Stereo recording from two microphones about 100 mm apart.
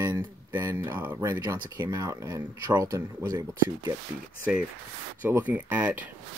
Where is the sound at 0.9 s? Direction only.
15° right (ahead or behind).